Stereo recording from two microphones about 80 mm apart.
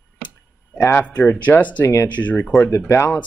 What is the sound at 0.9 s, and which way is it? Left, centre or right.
Speech, left.